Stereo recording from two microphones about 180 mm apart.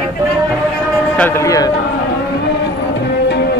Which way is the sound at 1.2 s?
15° left (ahead or behind).